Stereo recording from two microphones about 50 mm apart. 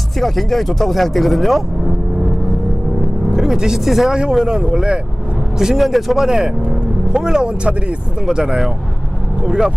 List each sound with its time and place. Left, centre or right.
0.2 s speech: centre
3.3 s speech: centre